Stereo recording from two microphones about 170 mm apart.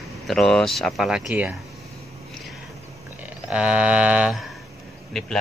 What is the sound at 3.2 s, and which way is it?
Speech, 5° right (ahead or behind).